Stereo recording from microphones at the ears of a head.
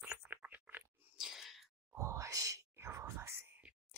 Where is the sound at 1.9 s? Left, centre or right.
Right.